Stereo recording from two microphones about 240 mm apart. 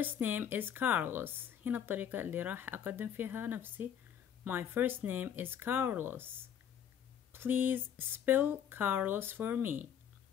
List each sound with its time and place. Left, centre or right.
0.0 s a woman's voice: centre
7.3 s a woman's voice: centre